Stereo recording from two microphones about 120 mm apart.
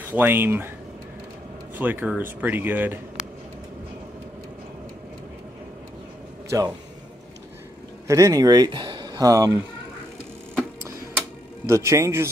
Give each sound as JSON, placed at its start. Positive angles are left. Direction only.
{"t": 0.0, "sound": "speech", "side_deg": -15}
{"t": 1.8, "sound": "speech", "side_deg": -15}
{"t": 6.5, "sound": "a man's voice", "side_deg": -30}
{"t": 8.1, "sound": "speech", "side_deg": -30}
{"t": 11.6, "sound": "a man's voice", "side_deg": -25}